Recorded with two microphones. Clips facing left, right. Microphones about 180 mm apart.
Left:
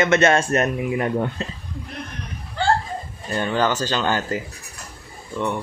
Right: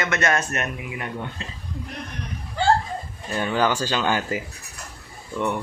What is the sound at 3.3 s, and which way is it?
Speech, 5° right (ahead or behind).